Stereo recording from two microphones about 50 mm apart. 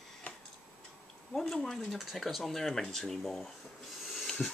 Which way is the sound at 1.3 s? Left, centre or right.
Centre.